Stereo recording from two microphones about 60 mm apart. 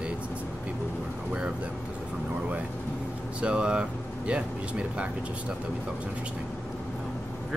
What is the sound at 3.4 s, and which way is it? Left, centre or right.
Speech, centre.